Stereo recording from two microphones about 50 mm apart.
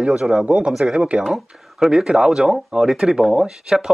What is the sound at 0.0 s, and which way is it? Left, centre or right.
Speech, centre.